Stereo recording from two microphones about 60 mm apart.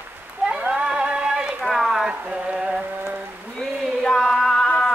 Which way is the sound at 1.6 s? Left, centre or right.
Centre.